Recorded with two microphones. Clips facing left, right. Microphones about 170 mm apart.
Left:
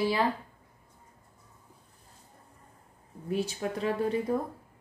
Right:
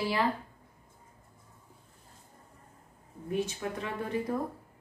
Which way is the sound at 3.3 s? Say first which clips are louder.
Left 2 dB; 35° left (ahead or behind).